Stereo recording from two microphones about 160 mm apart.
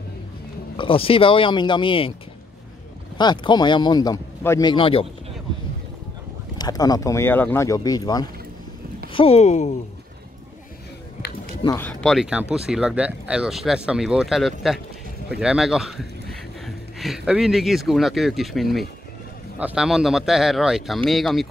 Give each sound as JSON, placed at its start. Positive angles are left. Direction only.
{"t": 0.7, "sound": "speech", "side_deg": 35}
{"t": 3.2, "sound": "speech", "side_deg": 25}
{"t": 4.6, "sound": "speech", "side_deg": 35}
{"t": 6.6, "sound": "speech", "side_deg": 25}
{"t": 9.1, "sound": "speech", "side_deg": 35}
{"t": 11.8, "sound": "speech", "side_deg": 0}